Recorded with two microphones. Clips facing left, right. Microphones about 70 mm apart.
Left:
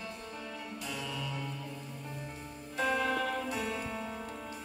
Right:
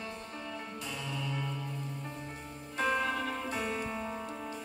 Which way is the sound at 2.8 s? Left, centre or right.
Right.